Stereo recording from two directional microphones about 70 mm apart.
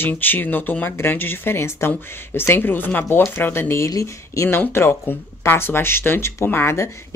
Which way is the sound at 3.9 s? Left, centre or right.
Left.